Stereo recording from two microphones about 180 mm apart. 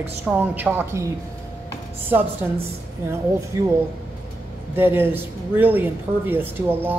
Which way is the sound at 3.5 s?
15° right (ahead or behind).